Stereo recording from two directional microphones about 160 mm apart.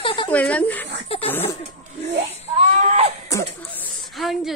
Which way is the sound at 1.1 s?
40° left (ahead or behind).